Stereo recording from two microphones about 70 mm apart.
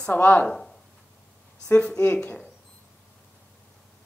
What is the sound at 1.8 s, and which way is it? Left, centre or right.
Speech, centre.